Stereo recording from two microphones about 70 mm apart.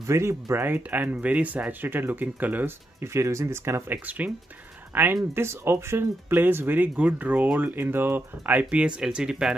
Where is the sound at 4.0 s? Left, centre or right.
Right.